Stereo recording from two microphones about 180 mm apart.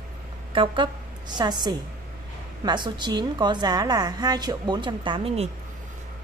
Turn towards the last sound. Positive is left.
turn(degrees=-30)  # may be behind; listen again after turning